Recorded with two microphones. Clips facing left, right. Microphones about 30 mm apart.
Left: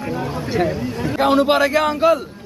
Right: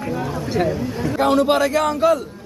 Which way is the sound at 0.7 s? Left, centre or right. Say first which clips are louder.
Even; left.